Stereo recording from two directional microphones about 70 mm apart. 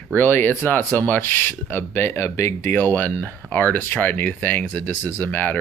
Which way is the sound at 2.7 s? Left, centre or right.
Left.